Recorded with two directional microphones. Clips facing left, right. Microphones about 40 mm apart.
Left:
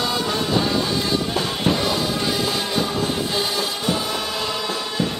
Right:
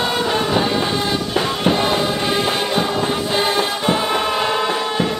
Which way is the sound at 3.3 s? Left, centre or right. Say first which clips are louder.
Right 5 dB; right.